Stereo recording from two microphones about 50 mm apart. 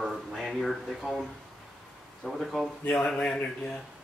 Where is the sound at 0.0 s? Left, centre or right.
Centre.